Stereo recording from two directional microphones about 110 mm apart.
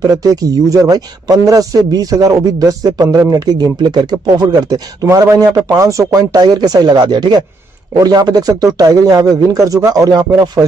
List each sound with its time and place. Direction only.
0.0 s a man's voice: 35° right (ahead or behind)